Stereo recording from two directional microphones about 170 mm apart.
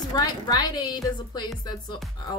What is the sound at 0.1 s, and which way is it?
A woman's voice, 20° left (ahead or behind).